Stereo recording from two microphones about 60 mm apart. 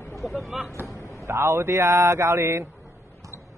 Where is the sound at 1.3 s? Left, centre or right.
Right.